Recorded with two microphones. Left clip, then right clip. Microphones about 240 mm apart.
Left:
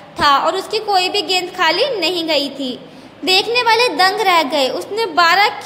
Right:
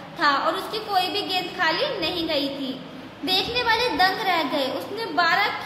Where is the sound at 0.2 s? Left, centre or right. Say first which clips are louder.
Left 8 dB; left.